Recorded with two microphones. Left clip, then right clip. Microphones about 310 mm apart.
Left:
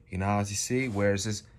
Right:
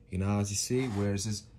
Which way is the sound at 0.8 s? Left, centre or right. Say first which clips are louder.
Left 6 dB; centre.